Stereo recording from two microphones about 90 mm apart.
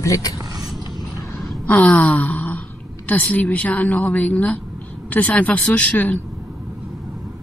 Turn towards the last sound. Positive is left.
turn(degrees=15)  # may be behind; listen again after turning